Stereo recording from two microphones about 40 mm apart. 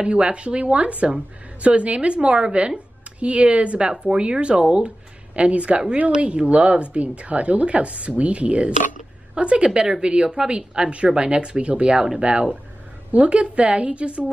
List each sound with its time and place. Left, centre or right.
0.0 s a woman's voice: right